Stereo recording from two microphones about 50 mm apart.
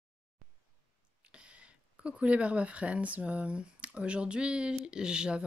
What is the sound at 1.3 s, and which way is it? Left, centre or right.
Speech, right.